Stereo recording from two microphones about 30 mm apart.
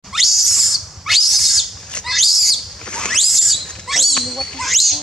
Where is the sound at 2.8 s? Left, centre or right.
Left.